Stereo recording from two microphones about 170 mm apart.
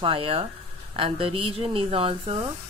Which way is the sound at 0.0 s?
35° right (ahead or behind).